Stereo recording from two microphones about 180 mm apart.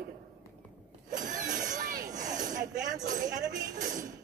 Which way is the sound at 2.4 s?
45° right (ahead or behind).